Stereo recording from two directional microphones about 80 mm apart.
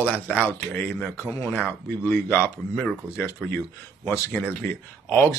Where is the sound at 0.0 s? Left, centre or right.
Left.